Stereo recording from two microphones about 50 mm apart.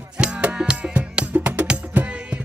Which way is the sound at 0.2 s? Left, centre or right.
Right.